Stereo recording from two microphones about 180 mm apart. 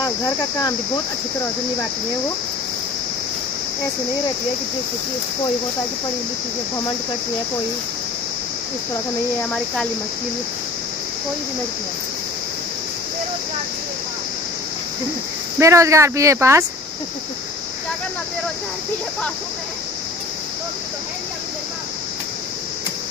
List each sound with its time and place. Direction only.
9.4 s speech: 5° left (ahead or behind)
15.6 s speech: 15° right (ahead or behind)